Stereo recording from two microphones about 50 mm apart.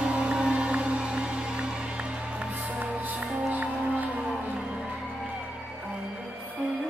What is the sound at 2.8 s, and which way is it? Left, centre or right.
Music, right.